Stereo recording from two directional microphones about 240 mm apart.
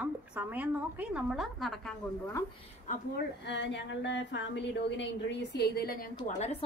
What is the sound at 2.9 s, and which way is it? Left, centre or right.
A woman's voice, left.